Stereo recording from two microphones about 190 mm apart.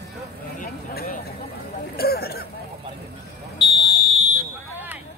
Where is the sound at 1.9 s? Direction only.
55° left (ahead or behind).